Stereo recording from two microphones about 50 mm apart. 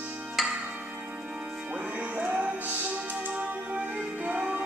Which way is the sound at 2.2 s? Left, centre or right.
Right.